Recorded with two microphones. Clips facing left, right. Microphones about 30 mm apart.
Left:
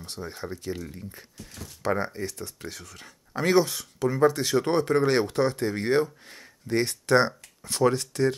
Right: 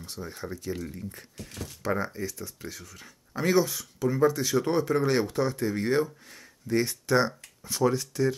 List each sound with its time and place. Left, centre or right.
0.2 s speech: left
1.8 s speech: left